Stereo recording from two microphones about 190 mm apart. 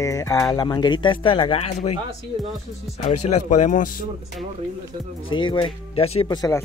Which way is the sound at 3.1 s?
35° left (ahead or behind).